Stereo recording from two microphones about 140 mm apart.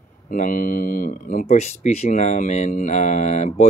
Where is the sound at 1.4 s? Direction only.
50° left (ahead or behind).